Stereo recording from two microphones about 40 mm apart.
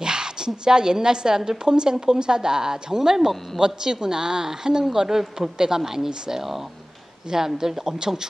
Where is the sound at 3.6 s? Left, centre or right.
Centre.